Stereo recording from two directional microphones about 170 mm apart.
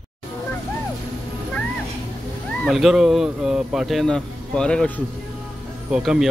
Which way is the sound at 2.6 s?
Centre (ahead or behind).